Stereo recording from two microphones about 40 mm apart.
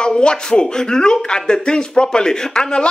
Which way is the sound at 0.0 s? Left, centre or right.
Left.